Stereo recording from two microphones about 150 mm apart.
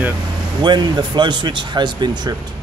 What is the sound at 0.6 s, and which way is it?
Speech, 30° right (ahead or behind).